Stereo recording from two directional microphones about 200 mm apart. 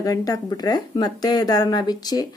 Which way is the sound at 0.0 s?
20° left (ahead or behind).